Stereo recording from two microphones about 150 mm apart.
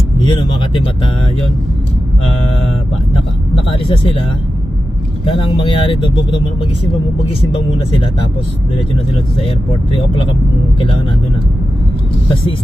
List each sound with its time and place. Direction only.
0.2 s speech: 35° left (ahead or behind)
5.7 s speech: 35° left (ahead or behind)
7.7 s speech: 35° left (ahead or behind)